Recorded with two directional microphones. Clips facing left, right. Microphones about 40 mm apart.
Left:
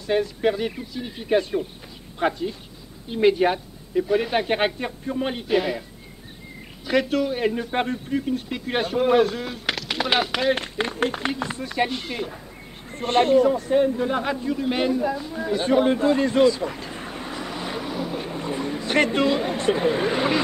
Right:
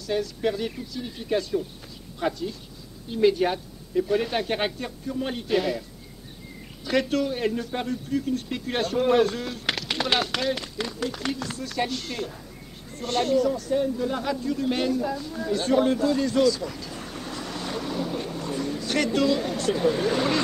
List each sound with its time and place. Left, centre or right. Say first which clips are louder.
0.0 s speech: left 4 dB; left
5.3 s speech: left 1 dB; centre
7.7 s speech: left 3 dB; left; by 10.5 s centre
10.5 s speech: left 5 dB; left
11.2 s speech: left 3 dB; left
12.9 s a man's voice: left 6 dB; left; by 18.3 s centre
18.3 s speech: left 2 dB; left